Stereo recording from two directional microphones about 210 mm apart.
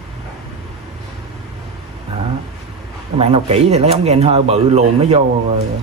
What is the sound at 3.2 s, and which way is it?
Speech, 30° right (ahead or behind).